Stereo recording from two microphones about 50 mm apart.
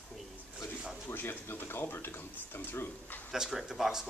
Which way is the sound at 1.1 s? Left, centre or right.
Left.